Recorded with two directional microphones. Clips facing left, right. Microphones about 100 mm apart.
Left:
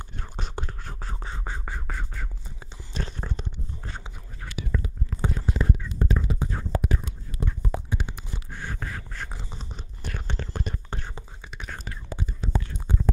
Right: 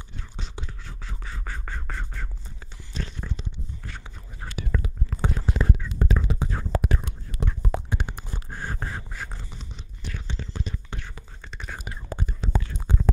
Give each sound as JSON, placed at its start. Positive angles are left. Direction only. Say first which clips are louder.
{"t": 0.0, "sound": "whispering", "louder": "left 3 dB", "side_deg": 55}
{"t": 1.3, "sound": "whispering", "louder": "even", "side_deg": 20}
{"t": 1.7, "sound": "a sound", "louder": "even", "side_deg": 5}
{"t": 3.0, "sound": "a sound", "louder": "left 1 dB", "side_deg": 40}
{"t": 4.6, "sound": "whispering", "louder": "even", "side_deg": -70}
{"t": 10.0, "sound": "whispering", "louder": "left 2 dB", "side_deg": 55}
{"t": 11.5, "sound": "whispering", "louder": "right 1 dB", "side_deg": 0}
{"t": 12.1, "sound": "whispering", "louder": "right 1 dB", "side_deg": -50}
{"t": 12.4, "sound": "whispering", "louder": "even", "side_deg": -90}